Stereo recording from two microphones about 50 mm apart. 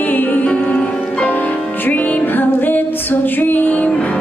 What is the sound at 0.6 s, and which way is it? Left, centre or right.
Music, left.